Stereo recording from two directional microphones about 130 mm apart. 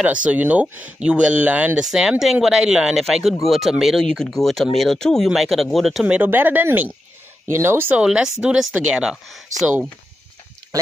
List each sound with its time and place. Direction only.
0.0 s speech: 10° right (ahead or behind)